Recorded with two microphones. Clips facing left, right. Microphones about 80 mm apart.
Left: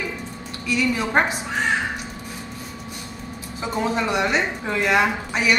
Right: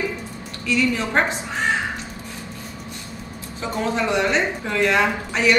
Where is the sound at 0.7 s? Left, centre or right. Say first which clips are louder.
Right 1 dB; centre.